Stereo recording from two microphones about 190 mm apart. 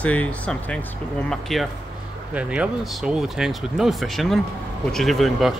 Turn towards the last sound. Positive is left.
turn(degrees=0)  # may be behind; listen again after turning